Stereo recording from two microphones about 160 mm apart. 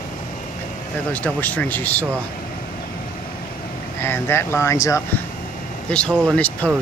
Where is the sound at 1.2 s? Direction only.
10° left (ahead or behind).